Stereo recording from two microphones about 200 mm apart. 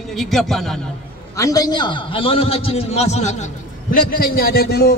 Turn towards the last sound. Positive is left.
turn(degrees=55)  # may be behind; listen again after turning